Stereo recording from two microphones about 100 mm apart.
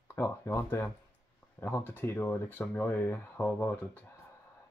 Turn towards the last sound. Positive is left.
turn(degrees=20)  # may be behind; listen again after turning